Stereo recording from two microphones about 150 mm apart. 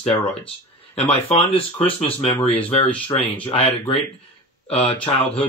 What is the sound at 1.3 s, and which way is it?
Speech, 40° left (ahead or behind).